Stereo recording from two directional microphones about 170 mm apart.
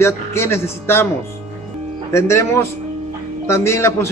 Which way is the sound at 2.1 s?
15° left (ahead or behind).